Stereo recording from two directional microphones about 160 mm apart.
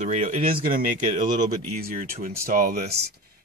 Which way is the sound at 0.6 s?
60° right (ahead or behind).